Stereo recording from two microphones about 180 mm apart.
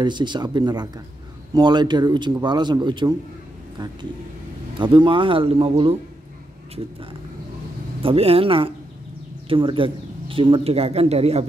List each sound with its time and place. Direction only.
0.0 s a man's voice: 25° right (ahead or behind)
8.0 s speech: 30° right (ahead or behind)